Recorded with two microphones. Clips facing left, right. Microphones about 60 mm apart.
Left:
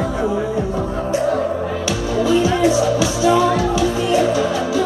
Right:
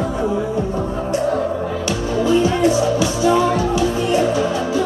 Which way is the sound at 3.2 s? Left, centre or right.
Right.